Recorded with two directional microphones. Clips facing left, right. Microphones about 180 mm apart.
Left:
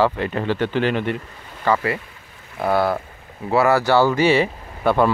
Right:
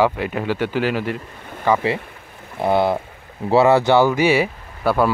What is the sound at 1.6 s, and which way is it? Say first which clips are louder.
Speech: right 2 dB; 20° right (ahead or behind).